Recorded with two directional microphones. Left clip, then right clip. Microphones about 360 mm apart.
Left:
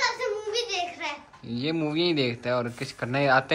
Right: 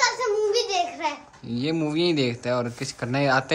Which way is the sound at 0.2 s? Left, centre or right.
Right.